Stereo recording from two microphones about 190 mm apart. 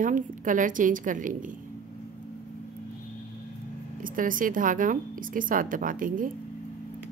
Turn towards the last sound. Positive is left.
turn(degrees=-45)  # may be behind; listen again after turning